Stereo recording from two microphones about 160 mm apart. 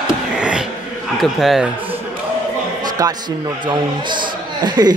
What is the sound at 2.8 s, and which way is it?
A man's voice, 25° right (ahead or behind).